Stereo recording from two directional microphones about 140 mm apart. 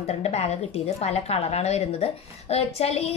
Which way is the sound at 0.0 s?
50° left (ahead or behind).